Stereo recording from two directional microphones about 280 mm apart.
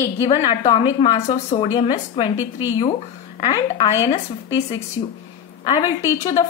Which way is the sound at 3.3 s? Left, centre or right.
Left.